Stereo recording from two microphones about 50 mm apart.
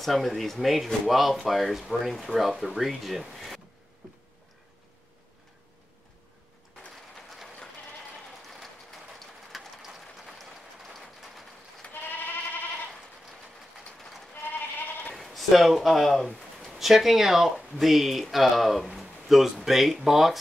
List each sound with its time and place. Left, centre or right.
0.0 s speech: centre
9.5 s rain: centre
11.9 s goat: left
14.3 s sheep: left
15.1 s speech: centre
16.3 s a sound: centre
16.7 s speech: centre